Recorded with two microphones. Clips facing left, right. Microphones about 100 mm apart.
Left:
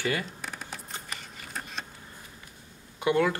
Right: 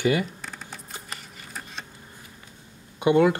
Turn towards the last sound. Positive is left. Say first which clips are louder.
# right 6 dB
turn(degrees=-20)  # may be behind; listen again after turning